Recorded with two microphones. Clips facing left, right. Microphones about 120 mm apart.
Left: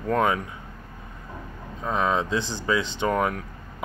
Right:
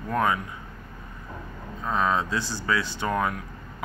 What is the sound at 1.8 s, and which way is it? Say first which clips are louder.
Speech: left 1 dB; 20° left (ahead or behind).